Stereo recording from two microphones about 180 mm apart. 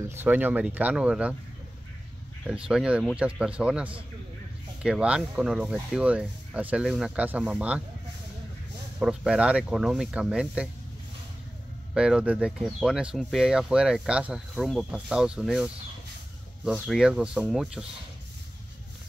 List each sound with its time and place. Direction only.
0.2 s speech: 10° right (ahead or behind)
2.4 s speech: 5° right (ahead or behind)
9.0 s speech: 5° right (ahead or behind)
11.9 s speech: 5° right (ahead or behind)